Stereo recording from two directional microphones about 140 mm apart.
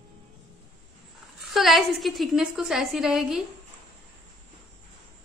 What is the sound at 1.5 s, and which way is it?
A woman's voice, centre (ahead or behind).